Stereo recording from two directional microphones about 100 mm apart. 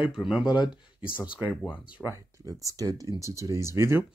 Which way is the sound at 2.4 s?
35° right (ahead or behind).